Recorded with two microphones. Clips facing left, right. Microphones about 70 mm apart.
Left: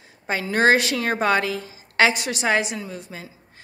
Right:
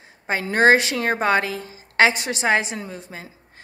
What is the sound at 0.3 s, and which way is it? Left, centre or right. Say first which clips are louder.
A woman's voice: right 2 dB; right.